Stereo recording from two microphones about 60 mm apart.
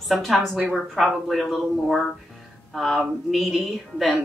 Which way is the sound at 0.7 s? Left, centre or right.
Centre.